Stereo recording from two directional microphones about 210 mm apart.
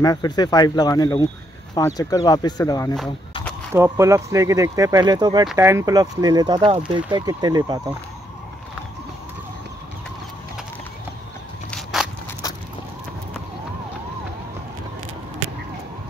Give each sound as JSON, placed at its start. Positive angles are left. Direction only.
{"t": 0.0, "sound": "speech", "side_deg": 20}
{"t": 3.7, "sound": "speech", "side_deg": -15}
{"t": 11.7, "sound": "a sound", "side_deg": 0}